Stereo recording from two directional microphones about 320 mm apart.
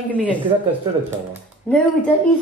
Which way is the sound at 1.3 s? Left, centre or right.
Centre.